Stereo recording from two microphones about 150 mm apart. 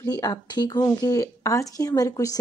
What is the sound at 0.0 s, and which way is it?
Speech, 25° left (ahead or behind).